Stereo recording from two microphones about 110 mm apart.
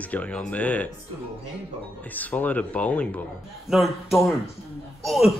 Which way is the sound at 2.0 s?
15° left (ahead or behind).